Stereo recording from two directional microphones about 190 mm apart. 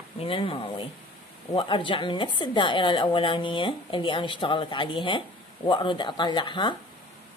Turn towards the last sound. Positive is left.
turn(degrees=25)  # may be behind; listen again after turning